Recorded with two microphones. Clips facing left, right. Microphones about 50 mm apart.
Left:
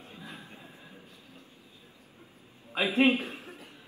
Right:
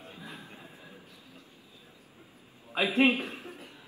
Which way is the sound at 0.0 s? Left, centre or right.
Right.